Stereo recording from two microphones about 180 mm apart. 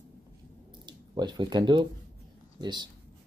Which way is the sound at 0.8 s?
25° right (ahead or behind).